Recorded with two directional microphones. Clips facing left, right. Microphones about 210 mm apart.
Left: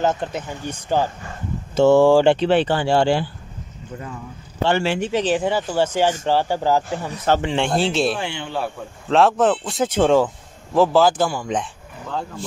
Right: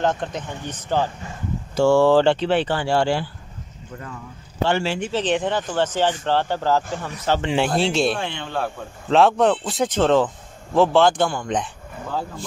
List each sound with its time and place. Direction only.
0.0 s speech: 5° left (ahead or behind)
4.7 s speech: 60° left (ahead or behind)
5.1 s speech: 5° left (ahead or behind)
7.5 s a man's voice: 5° right (ahead or behind)